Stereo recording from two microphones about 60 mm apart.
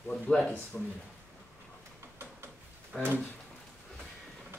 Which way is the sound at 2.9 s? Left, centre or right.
Centre.